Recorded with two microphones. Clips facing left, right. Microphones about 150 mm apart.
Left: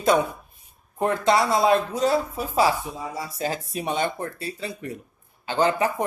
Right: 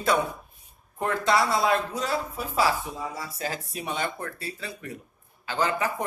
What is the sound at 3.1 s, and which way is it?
Speech, 20° left (ahead or behind).